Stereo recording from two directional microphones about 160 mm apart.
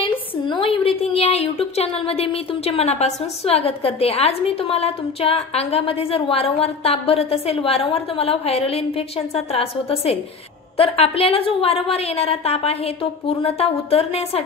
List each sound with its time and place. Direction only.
0.5 s a woman's voice: 30° left (ahead or behind)